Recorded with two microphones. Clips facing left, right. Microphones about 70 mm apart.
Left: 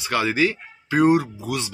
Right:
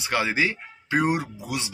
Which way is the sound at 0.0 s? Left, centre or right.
Right.